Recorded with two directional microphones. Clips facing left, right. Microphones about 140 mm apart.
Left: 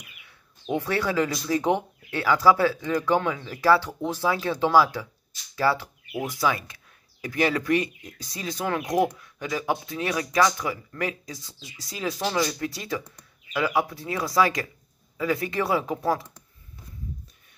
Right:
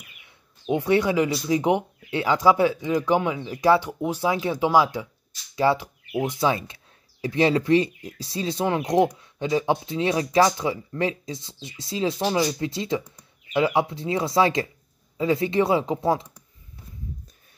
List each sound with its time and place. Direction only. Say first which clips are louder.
0.7 s speech: right 5 dB; 15° right (ahead or behind)